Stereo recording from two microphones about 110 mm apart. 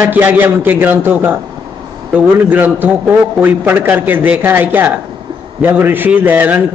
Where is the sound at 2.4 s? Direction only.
15° right (ahead or behind).